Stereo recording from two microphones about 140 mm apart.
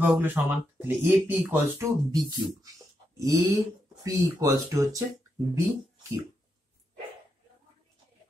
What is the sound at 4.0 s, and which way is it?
Speech, 25° right (ahead or behind).